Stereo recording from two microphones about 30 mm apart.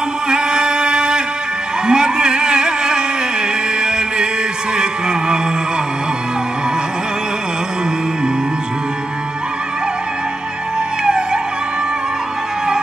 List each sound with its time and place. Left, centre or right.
0.3 s music: right